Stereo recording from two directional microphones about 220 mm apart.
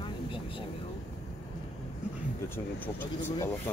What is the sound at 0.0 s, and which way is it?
Vehicle, 25° left (ahead or behind).